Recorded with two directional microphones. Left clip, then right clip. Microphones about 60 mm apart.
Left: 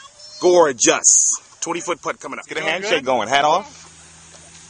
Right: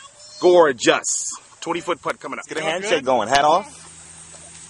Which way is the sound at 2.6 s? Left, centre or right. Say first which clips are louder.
Left 1 dB; centre.